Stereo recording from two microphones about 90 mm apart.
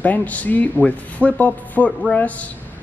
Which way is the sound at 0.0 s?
20° left (ahead or behind).